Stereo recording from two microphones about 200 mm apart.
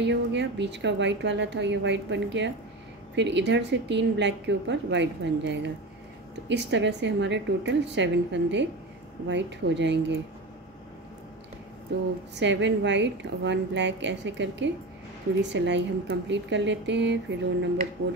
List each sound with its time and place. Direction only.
0.0 s a woman's voice: 60° right (ahead or behind)
12.4 s a woman's voice: 65° right (ahead or behind)